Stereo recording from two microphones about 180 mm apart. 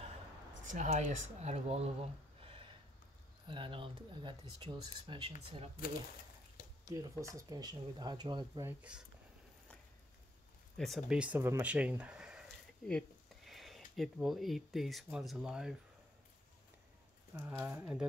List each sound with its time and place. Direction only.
0.7 s speech: 40° right (ahead or behind)
3.4 s speech: 25° right (ahead or behind)
6.9 s speech: 20° right (ahead or behind)
10.8 s speech: centre (ahead or behind)
17.4 s speech: 10° right (ahead or behind)